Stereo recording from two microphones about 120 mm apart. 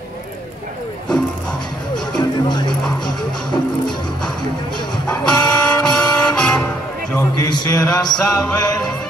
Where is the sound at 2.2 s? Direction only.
35° left (ahead or behind).